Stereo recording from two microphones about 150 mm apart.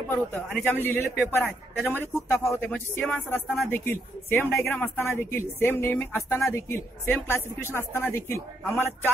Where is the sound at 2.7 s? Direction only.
10° left (ahead or behind).